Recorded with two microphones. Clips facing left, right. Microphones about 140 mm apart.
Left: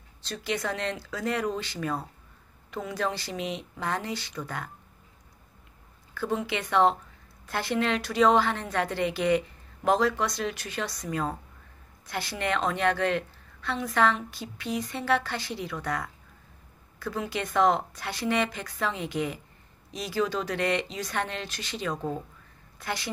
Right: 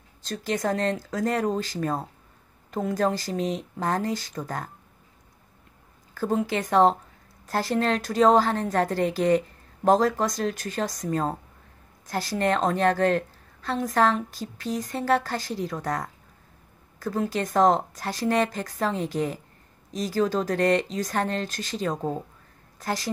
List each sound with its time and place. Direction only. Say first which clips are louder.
0.2 s a woman's voice: right 4 dB; 45° right (ahead or behind)
6.1 s a woman's voice: right 4 dB; 40° right (ahead or behind)